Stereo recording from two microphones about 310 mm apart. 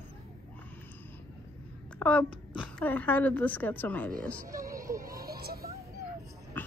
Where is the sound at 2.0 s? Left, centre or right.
Centre.